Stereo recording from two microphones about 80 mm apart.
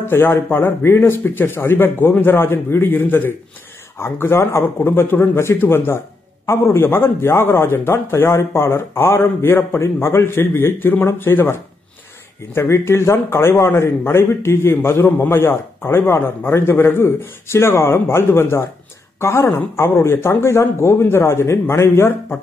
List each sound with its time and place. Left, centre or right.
0.1 s a man's voice: left
12.5 s a man's voice: left